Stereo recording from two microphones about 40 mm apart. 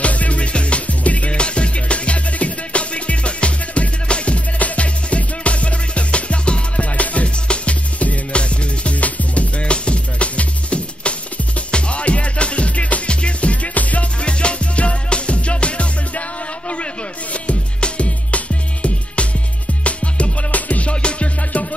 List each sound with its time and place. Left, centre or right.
0.0 s music: left
14.2 s music: left